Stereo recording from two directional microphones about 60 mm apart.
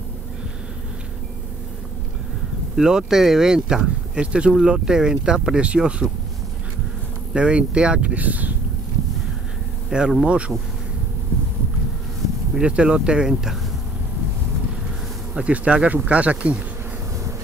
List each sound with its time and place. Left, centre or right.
2.7 s speech: centre
7.3 s speech: centre
9.8 s speech: centre
12.5 s speech: centre
15.3 s speech: centre